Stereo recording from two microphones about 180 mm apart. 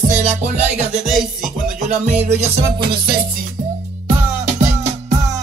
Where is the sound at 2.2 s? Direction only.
30° right (ahead or behind).